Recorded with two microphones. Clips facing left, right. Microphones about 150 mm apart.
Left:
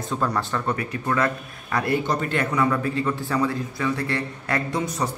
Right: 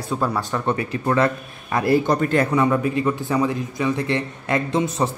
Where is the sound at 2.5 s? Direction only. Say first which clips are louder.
Right 3 dB; 20° right (ahead or behind).